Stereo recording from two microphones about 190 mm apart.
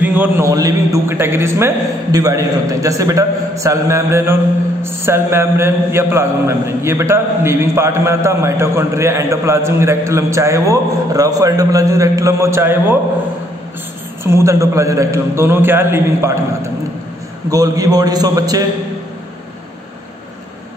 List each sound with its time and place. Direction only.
0.0 s a man's voice: 10° right (ahead or behind)
14.2 s a man's voice: 15° right (ahead or behind)